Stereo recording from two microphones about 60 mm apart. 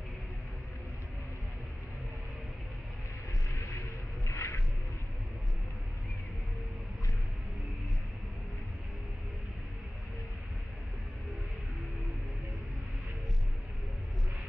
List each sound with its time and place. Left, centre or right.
3.4 s music: left